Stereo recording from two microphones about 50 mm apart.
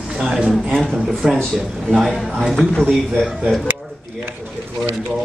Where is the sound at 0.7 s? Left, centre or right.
Centre.